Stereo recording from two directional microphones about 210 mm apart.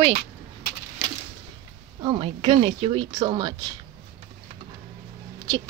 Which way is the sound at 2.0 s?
25° right (ahead or behind).